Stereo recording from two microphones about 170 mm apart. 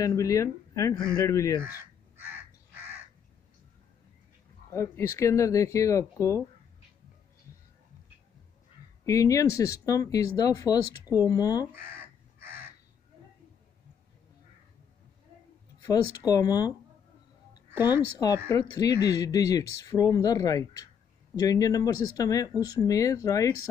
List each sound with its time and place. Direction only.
0.0 s speech: 20° left (ahead or behind)
4.7 s speech: 15° left (ahead or behind)
9.0 s speech: 20° left (ahead or behind)
15.8 s speech: 20° left (ahead or behind)
17.7 s speech: 10° right (ahead or behind)
18.5 s speech: 20° left (ahead or behind)